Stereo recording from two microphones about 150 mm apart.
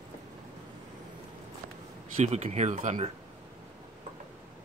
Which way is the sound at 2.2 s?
45° right (ahead or behind).